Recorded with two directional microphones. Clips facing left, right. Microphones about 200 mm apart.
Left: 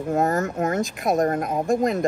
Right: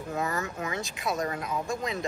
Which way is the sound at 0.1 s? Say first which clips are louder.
Left 10 dB; 45° left (ahead or behind).